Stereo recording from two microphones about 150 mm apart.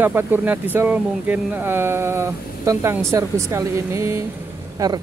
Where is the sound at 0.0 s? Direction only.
15° right (ahead or behind).